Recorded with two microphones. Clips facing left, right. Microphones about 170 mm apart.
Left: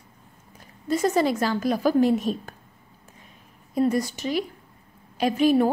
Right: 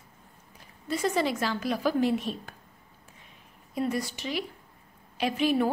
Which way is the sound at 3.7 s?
40° left (ahead or behind).